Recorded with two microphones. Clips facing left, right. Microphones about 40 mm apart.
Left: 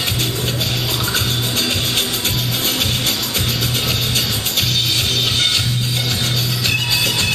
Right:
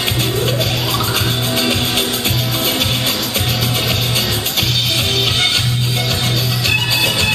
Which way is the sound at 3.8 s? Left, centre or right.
Centre.